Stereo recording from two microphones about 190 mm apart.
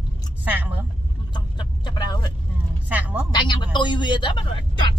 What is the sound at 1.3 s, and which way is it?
Speech, 25° left (ahead or behind).